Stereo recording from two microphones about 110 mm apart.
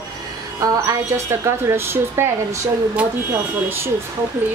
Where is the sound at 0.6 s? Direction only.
30° right (ahead or behind).